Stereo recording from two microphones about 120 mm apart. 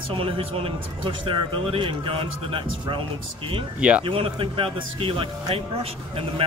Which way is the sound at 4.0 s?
50° right (ahead or behind).